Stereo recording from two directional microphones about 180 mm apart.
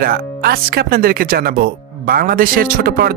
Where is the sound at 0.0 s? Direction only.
55° right (ahead or behind).